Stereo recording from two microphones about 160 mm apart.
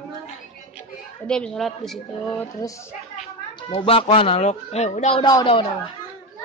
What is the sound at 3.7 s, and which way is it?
Speech, 35° left (ahead or behind).